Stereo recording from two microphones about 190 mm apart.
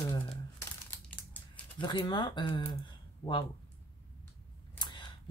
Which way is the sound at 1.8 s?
25° left (ahead or behind).